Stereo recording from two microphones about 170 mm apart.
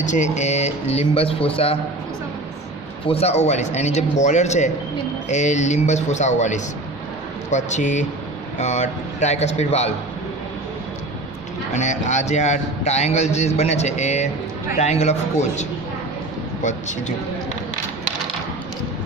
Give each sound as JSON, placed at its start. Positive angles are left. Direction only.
{"t": 0.0, "sound": "speech", "side_deg": 45}
{"t": 3.1, "sound": "speech", "side_deg": 35}
{"t": 11.7, "sound": "speech", "side_deg": 45}